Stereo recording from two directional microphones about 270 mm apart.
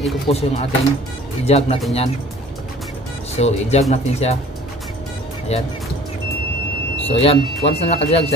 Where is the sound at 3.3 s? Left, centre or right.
Left.